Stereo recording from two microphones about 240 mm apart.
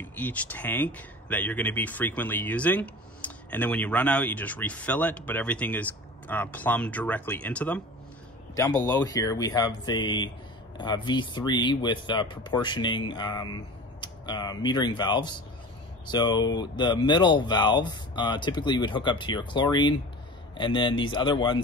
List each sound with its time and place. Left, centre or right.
0.0 s speech: centre